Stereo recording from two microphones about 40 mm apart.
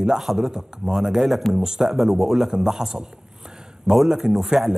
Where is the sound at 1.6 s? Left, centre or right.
Centre.